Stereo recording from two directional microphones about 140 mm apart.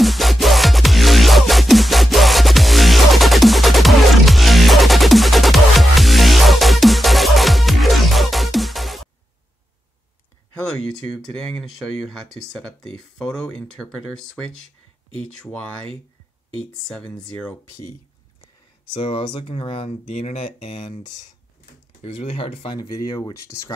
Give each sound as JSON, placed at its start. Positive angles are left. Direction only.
{"t": 0.0, "sound": "music", "side_deg": 0}
{"t": 10.5, "sound": "speech", "side_deg": 5}
{"t": 16.8, "sound": "speech", "side_deg": 10}
{"t": 18.9, "sound": "speech", "side_deg": 40}
{"t": 22.0, "sound": "speech", "side_deg": 45}
{"t": 22.8, "sound": "speech", "side_deg": 30}